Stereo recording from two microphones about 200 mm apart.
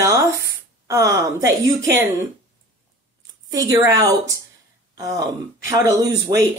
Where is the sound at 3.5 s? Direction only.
20° right (ahead or behind).